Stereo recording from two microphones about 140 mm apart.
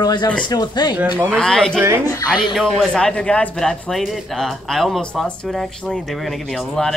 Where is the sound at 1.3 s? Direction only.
5° left (ahead or behind).